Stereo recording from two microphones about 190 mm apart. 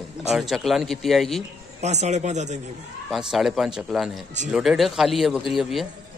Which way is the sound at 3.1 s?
Centre (ahead or behind).